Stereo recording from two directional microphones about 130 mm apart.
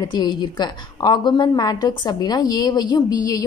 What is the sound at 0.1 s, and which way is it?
A woman's voice, 35° left (ahead or behind).